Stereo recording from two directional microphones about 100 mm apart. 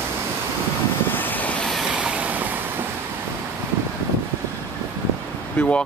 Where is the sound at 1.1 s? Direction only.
20° left (ahead or behind).